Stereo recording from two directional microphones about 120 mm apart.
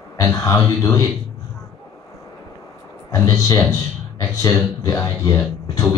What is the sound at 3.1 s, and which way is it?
Speech, 25° left (ahead or behind).